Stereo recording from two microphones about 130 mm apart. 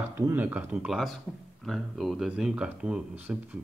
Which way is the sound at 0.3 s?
10° right (ahead or behind).